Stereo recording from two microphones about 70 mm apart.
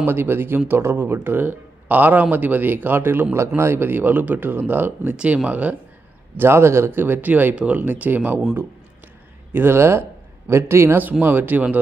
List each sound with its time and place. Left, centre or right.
0.0 s speech: right
5.1 s speech: centre
6.3 s speech: right
9.5 s speech: right